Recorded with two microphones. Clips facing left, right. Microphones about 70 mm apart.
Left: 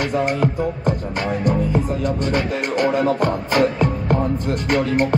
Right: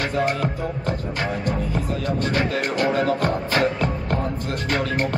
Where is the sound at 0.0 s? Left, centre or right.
Left.